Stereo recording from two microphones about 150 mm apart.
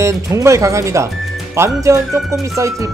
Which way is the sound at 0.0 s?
20° right (ahead or behind).